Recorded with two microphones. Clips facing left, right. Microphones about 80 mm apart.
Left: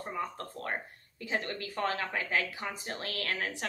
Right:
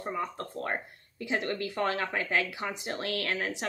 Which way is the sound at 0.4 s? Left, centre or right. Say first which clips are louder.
Right 3 dB; right.